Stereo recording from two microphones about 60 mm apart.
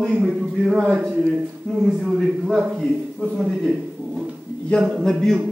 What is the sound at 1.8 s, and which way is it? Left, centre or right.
A man's voice, centre.